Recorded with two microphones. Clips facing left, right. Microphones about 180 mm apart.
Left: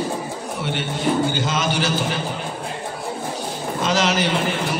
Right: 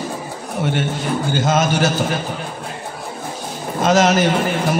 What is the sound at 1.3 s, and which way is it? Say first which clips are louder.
Speech: right 5 dB; 45° right (ahead or behind).